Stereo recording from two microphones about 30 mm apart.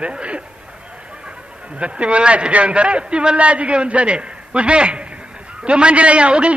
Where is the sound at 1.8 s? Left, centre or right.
Right.